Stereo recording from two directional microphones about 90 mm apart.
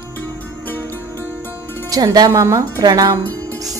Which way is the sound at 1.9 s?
45° right (ahead or behind).